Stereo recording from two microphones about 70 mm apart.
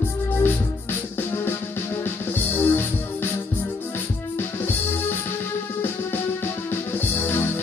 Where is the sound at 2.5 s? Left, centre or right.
Left.